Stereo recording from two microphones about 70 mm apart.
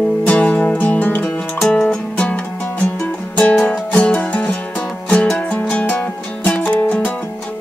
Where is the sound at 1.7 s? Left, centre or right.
Centre.